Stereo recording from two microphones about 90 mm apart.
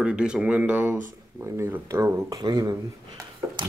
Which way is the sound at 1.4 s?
30° right (ahead or behind).